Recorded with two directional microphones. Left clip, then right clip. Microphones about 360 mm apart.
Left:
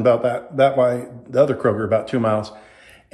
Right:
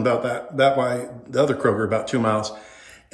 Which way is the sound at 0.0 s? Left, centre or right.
Centre.